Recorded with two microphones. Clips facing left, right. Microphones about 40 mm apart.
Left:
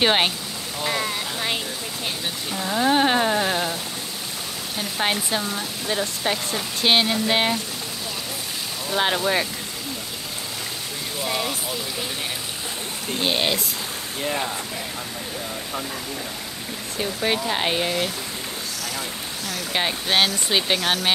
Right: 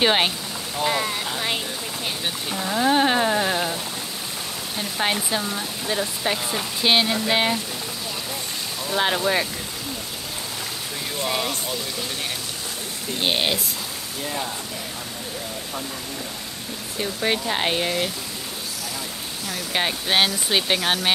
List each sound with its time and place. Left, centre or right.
0.0 s speech: centre
4.7 s speech: centre
8.9 s speech: centre
11.1 s speech: centre
14.2 s speech: left
17.0 s speech: centre
19.7 s speech: centre